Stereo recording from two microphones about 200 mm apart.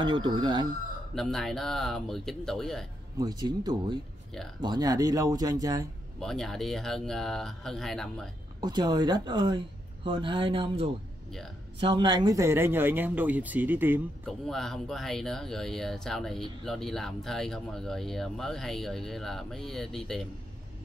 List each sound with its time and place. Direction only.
0.0 s speech: 25° right (ahead or behind)
1.1 s speech: centre (ahead or behind)
3.2 s speech: 20° right (ahead or behind)
6.1 s speech: centre (ahead or behind)
8.5 s speech: 20° right (ahead or behind)
14.2 s speech: centre (ahead or behind)